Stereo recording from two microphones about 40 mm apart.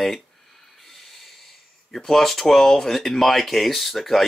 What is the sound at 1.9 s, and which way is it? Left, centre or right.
Speech, centre.